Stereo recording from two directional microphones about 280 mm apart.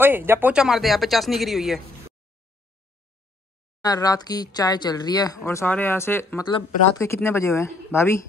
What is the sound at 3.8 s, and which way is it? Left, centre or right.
Speech, centre.